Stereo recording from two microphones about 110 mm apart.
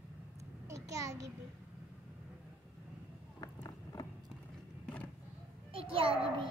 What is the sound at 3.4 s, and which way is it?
Vehicle, 40° left (ahead or behind).